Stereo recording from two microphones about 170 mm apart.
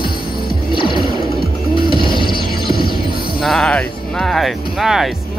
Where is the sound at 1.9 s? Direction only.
30° left (ahead or behind).